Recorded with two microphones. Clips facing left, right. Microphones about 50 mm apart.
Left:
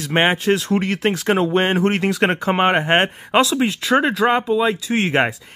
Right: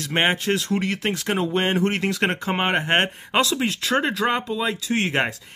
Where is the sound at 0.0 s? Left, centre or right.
Left.